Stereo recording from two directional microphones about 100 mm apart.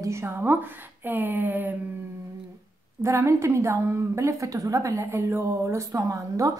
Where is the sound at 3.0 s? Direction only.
30° right (ahead or behind).